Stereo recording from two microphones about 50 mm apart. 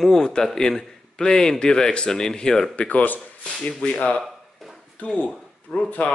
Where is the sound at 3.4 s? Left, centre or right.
Left.